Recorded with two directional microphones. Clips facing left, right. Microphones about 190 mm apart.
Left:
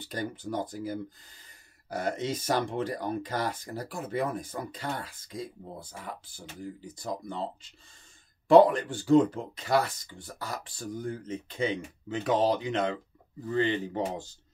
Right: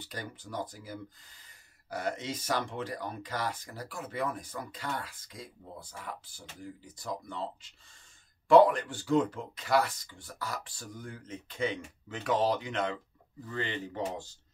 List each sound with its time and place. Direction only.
0.1 s speech: 25° left (ahead or behind)
2.2 s speech: 25° left (ahead or behind)
7.0 s speech: 30° left (ahead or behind)
8.5 s speech: 25° left (ahead or behind)